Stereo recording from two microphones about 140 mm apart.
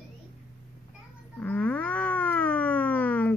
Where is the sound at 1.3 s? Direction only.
10° left (ahead or behind).